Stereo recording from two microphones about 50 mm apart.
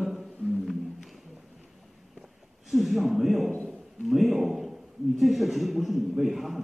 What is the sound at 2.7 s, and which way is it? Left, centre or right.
Speech, centre.